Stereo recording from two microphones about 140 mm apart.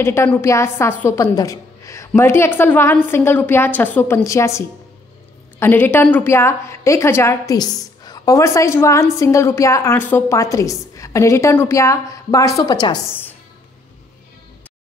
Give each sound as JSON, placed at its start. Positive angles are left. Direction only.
{"t": 0.0, "sound": "a woman's voice", "side_deg": 15}